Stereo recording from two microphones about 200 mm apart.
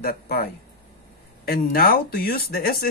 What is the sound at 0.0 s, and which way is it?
Speech, 50° left (ahead or behind).